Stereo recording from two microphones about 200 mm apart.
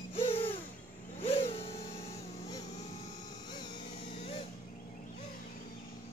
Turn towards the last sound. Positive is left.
turn(degrees=30)  # may be behind; listen again after turning